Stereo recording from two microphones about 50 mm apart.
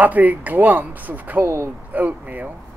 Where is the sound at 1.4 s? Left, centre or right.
Right.